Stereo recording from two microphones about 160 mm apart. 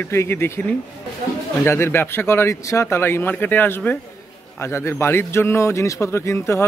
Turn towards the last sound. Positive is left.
turn(degrees=15)  # may be behind; listen again after turning